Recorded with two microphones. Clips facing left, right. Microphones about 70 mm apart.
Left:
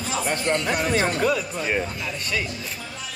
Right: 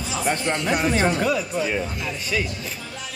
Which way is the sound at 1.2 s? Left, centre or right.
Centre.